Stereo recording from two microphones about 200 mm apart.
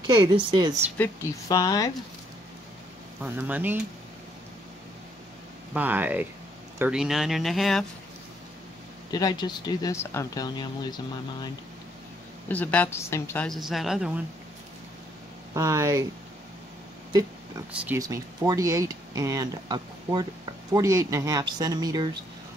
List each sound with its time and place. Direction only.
0.0 s speech: 20° right (ahead or behind)
0.9 s speech: 10° left (ahead or behind)
3.2 s speech: 10° right (ahead or behind)
5.7 s speech: 10° right (ahead or behind)
9.1 s speech: 20° left (ahead or behind)
12.4 s speech: 10° left (ahead or behind)
13.5 s speech: centre (ahead or behind)
15.5 s speech: 15° right (ahead or behind)
17.1 s speech: 15° right (ahead or behind)